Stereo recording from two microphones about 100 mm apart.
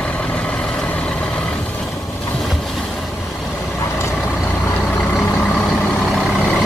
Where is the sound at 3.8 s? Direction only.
25° left (ahead or behind); by 6.4 s 5° right (ahead or behind).